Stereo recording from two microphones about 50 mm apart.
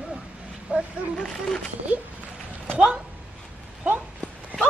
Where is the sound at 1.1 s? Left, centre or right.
Centre.